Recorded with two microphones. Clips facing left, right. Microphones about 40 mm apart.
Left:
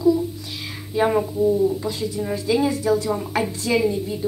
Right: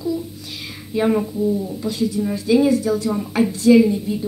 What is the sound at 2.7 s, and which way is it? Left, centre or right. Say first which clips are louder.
Speech: right 2 dB; left.